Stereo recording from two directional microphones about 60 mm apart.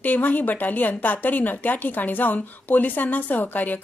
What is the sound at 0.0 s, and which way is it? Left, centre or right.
A woman's voice, left.